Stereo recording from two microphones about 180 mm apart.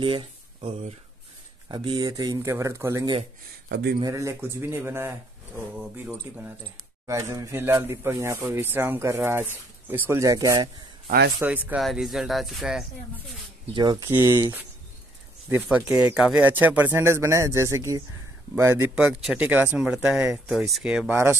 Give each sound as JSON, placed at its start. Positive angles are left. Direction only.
{"t": 0.0, "sound": "speech", "side_deg": -30}
{"t": 1.7, "sound": "speech", "side_deg": -25}
{"t": 3.6, "sound": "speech", "side_deg": -70}
{"t": 4.0, "sound": "speech", "side_deg": -15}
{"t": 7.1, "sound": "speech", "side_deg": -15}
{"t": 11.1, "sound": "a man's voice", "side_deg": -65}
{"t": 11.4, "sound": "speech", "side_deg": -10}
{"t": 13.7, "sound": "speech", "side_deg": -25}